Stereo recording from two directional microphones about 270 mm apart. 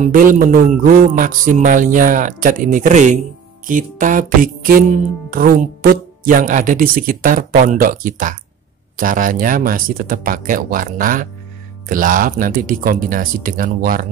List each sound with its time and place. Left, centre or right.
0.0 s speech: right
3.6 s music: right